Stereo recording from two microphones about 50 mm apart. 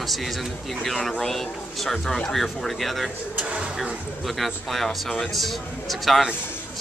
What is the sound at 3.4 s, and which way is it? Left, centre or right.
Speech, right.